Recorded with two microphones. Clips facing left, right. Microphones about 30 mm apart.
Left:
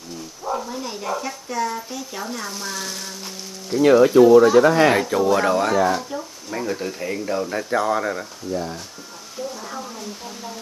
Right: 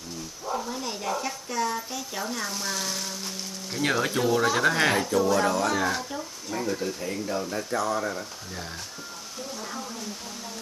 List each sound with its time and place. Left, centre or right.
0.7 s speech: centre
4.9 s speech: left
5.8 s speech: centre
6.5 s speech: left